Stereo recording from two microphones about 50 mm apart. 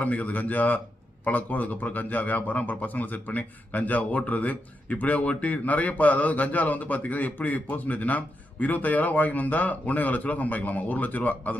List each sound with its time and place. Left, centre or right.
0.0 s a man's voice: left